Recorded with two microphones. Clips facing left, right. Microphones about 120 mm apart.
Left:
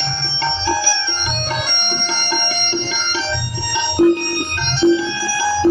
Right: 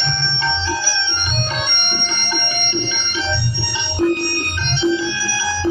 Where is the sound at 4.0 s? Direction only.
20° left (ahead or behind).